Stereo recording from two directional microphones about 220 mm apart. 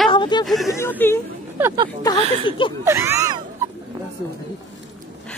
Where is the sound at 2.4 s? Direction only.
25° left (ahead or behind).